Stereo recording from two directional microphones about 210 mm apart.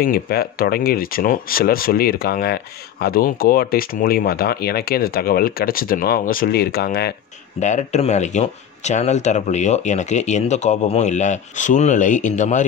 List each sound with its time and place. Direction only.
0.0 s speech: 45° left (ahead or behind)
7.6 s speech: 35° left (ahead or behind)